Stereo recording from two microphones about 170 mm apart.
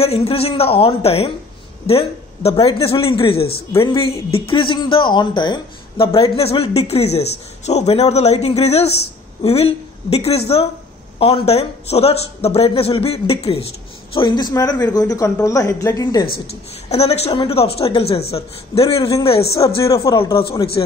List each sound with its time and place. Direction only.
0.0 s a woman's voice: 35° left (ahead or behind); by 16.3 s 20° left (ahead or behind)
16.4 s a woman's voice: 35° left (ahead or behind)
18.9 s speech: 20° left (ahead or behind)
20.5 s a woman's voice: 35° left (ahead or behind)